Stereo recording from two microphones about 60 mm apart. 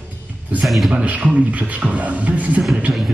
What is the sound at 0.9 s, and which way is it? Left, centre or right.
Speech, right.